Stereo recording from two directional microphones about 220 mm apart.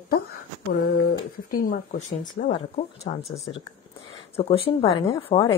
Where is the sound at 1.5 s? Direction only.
40° left (ahead or behind).